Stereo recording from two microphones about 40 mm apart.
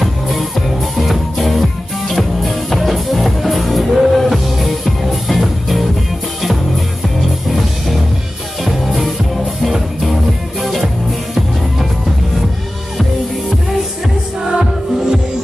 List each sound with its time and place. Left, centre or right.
0.0 s music: centre
7.2 s music: centre
14.4 s music: right